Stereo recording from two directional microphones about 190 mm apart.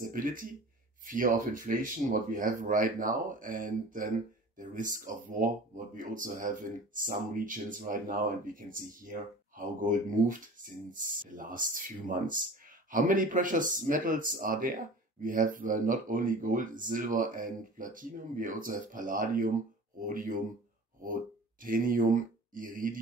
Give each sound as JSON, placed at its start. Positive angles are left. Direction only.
{"t": 0.0, "sound": "speech", "side_deg": -45}
{"t": 21.6, "sound": "speech", "side_deg": -45}